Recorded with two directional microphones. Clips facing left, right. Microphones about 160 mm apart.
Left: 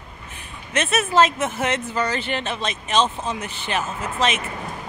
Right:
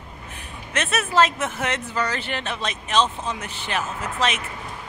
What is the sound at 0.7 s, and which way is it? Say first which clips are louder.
Speech: left 3 dB; 5° left (ahead or behind).